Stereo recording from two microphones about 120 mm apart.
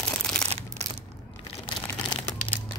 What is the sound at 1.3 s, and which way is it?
Crunch, 55° left (ahead or behind).